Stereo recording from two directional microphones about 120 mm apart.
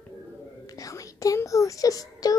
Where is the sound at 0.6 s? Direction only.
30° left (ahead or behind).